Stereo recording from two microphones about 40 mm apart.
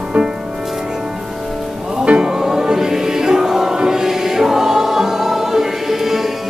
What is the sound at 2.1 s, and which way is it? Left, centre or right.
Music, right.